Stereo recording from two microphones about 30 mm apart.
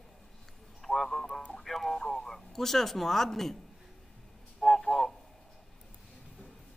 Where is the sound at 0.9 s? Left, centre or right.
Centre.